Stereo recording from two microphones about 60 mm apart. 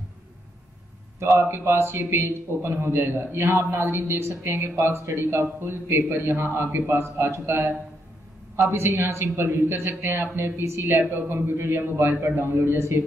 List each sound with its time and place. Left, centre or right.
1.8 s a man's voice: right